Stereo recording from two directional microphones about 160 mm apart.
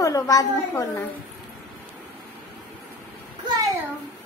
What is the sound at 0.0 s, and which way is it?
A woman's voice, 20° left (ahead or behind).